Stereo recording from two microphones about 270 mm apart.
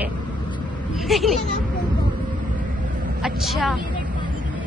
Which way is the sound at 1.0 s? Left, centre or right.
Centre.